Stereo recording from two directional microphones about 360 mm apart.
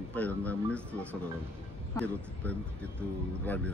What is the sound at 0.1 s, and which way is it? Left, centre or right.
Speech, centre.